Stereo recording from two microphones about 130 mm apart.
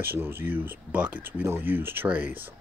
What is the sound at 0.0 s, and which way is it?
Speech, 15° right (ahead or behind).